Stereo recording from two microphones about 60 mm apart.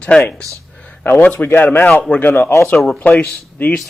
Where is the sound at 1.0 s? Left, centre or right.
Left.